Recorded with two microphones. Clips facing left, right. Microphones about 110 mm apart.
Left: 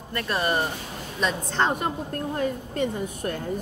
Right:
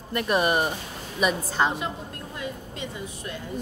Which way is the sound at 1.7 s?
50° left (ahead or behind).